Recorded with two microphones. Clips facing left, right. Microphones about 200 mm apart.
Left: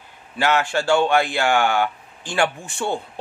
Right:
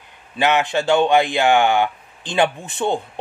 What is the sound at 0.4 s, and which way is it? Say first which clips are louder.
Speech: right 2 dB; 20° right (ahead or behind).